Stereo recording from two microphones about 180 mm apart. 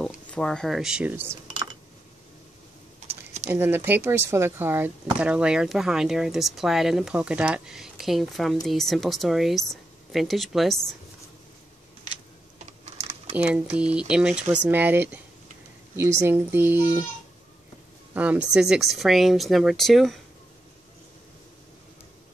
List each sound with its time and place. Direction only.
0.0 s speech: 5° left (ahead or behind); by 1.4 s 10° right (ahead or behind)
1.5 s typing: 25° right (ahead or behind)
3.4 s speech: 10° right (ahead or behind)
12.9 s typing: 40° right (ahead or behind)
13.4 s speech: 5° right (ahead or behind)
18.1 s speech: 5° right (ahead or behind)